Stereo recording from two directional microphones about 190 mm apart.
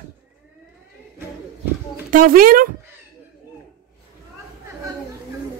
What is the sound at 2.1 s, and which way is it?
Speech, 45° right (ahead or behind).